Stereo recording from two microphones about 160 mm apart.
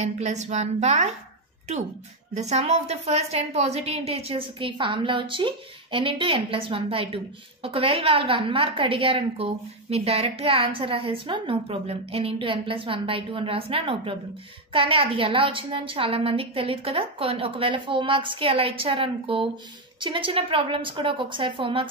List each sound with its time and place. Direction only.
0.0 s a woman's voice: 45° right (ahead or behind)
2.3 s a woman's voice: 45° right (ahead or behind)